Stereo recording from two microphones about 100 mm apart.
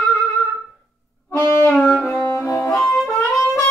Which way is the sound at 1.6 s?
10° left (ahead or behind).